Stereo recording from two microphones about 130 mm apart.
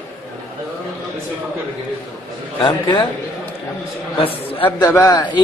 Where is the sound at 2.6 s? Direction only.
35° left (ahead or behind).